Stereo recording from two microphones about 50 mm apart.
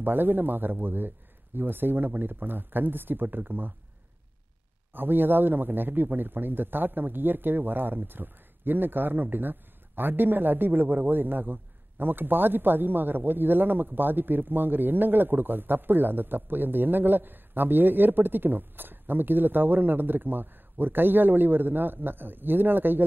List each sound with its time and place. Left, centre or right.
0.0 s speech: right
4.9 s speech: right